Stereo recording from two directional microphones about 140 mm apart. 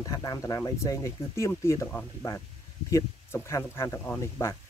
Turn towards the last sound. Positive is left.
turn(degrees=20)  # may be behind; listen again after turning